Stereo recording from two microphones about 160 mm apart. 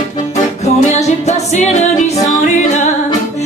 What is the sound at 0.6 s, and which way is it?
Music, 45° left (ahead or behind).